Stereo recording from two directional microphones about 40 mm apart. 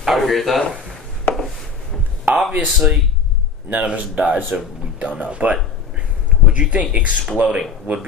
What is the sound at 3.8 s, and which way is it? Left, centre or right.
Speech, right.